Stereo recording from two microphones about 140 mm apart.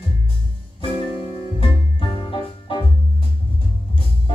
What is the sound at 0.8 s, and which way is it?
Music, 35° left (ahead or behind).